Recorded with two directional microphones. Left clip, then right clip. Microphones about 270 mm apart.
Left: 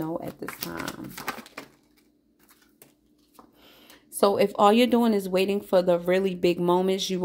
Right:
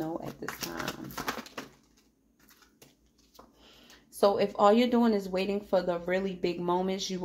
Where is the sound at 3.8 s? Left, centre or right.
Left.